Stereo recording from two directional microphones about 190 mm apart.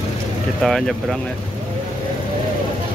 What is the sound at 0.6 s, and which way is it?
Speech, centre (ahead or behind).